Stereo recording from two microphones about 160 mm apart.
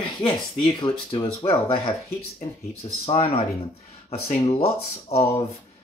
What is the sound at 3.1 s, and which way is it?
Speech, 40° left (ahead or behind).